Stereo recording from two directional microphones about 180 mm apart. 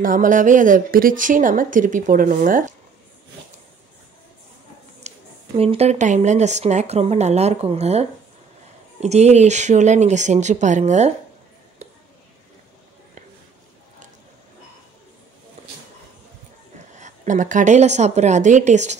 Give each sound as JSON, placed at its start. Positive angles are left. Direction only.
{"t": 0.0, "sound": "a woman's voice", "side_deg": -50}
{"t": 5.0, "sound": "speech", "side_deg": -35}
{"t": 11.8, "sound": "a sound", "side_deg": -35}
{"t": 16.9, "sound": "speech", "side_deg": -40}